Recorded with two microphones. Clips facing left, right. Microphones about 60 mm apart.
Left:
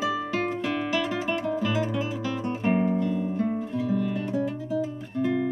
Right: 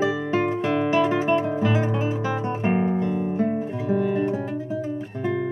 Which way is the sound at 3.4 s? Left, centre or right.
Right.